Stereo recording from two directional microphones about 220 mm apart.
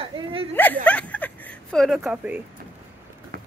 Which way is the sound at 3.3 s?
40° right (ahead or behind).